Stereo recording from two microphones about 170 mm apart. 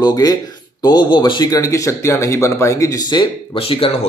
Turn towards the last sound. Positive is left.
turn(degrees=35)  # may be behind; listen again after turning